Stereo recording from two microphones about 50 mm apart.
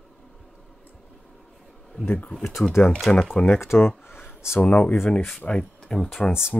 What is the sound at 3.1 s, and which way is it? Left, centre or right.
Speech, left.